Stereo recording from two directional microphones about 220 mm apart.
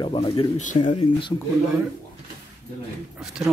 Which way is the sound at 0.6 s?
35° left (ahead or behind).